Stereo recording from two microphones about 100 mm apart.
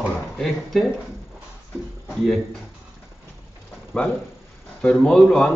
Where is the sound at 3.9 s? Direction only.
15° left (ahead or behind).